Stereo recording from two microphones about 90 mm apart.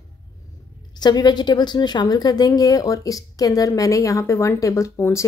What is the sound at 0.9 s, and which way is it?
A woman's voice, 50° left (ahead or behind).